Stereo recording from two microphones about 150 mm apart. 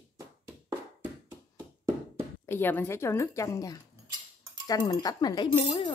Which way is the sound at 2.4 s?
15° left (ahead or behind).